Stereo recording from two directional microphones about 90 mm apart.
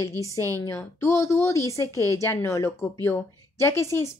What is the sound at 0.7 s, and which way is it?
Speech, 30° left (ahead or behind).